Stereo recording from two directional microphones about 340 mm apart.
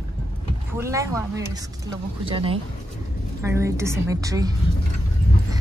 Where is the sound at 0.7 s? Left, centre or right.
Centre.